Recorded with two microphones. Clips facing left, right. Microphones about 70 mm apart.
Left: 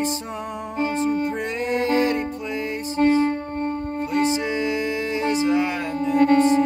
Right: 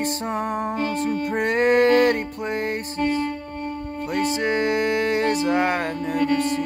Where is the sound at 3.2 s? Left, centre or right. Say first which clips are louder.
Left 5 dB; left.